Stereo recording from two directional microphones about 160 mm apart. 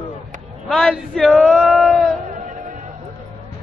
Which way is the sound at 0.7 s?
Centre (ahead or behind).